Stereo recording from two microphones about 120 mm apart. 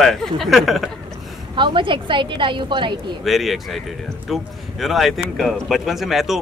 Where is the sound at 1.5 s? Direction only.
45° right (ahead or behind).